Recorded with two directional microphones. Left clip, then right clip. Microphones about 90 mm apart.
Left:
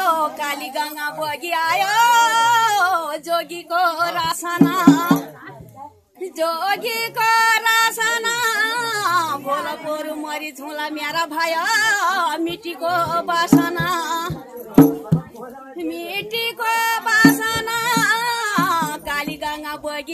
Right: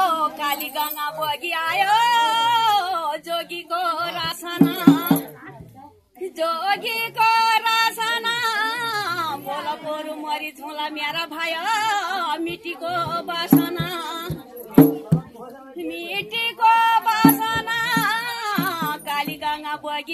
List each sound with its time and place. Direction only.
0.0 s child singing: 70° left (ahead or behind); by 5.1 s 55° left (ahead or behind)
6.3 s female singing: 50° left (ahead or behind)
10.2 s music: 50° left (ahead or behind)
15.9 s music: 55° left (ahead or behind)